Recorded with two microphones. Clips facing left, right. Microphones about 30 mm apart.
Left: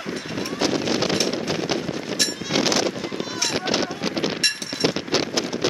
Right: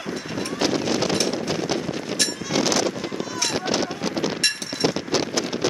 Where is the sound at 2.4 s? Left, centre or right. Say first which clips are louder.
Even; centre.